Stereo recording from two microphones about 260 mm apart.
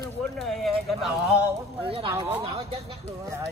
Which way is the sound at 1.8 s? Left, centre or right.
Right.